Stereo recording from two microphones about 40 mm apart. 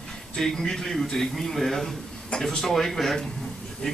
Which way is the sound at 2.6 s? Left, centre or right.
Centre.